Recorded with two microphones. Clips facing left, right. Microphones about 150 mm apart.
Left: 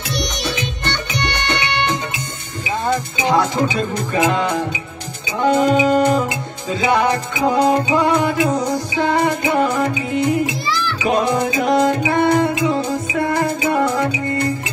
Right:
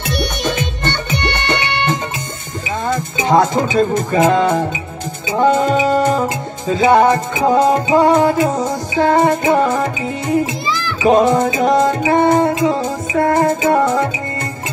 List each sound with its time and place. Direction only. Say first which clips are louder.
0.1 s music: right 4 dB; 55° right (ahead or behind)
4.1 s music: right 3 dB; 35° right (ahead or behind)
11.1 s music: right 6 dB; 40° right (ahead or behind)